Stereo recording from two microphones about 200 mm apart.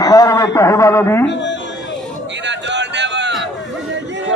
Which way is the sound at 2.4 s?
60° right (ahead or behind).